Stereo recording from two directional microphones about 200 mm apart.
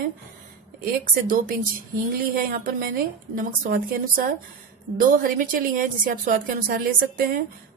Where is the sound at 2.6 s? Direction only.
45° right (ahead or behind).